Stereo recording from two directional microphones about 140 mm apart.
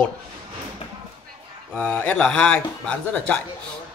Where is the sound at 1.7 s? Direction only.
10° left (ahead or behind).